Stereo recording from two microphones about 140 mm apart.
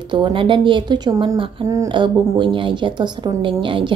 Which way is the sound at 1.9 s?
35° right (ahead or behind).